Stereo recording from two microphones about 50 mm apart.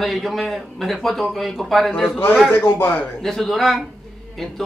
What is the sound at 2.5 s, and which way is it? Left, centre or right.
Speech, left.